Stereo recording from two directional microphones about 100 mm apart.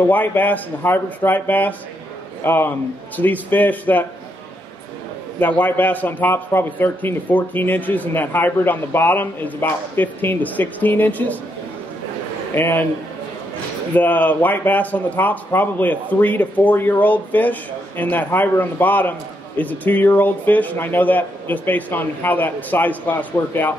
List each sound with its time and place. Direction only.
0.0 s a man's voice: 15° left (ahead or behind)
5.4 s speech: 15° left (ahead or behind)
12.5 s a man's voice: 20° left (ahead or behind)
13.9 s speech: 15° left (ahead or behind)